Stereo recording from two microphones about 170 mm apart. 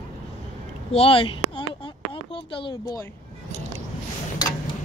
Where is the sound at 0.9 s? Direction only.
30° left (ahead or behind).